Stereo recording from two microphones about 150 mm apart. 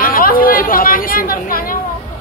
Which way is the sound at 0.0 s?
70° left (ahead or behind).